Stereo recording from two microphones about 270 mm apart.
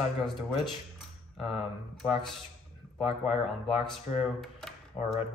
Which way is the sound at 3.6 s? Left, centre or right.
Centre.